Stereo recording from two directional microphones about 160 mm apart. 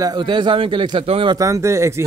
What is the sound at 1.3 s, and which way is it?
Speech, 20° right (ahead or behind).